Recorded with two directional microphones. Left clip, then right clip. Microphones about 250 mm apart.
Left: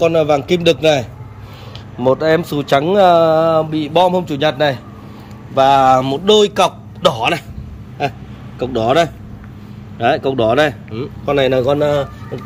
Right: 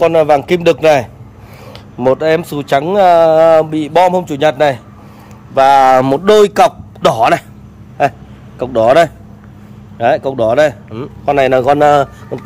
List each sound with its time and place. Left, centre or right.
0.0 s a man's voice: centre
8.5 s speech: centre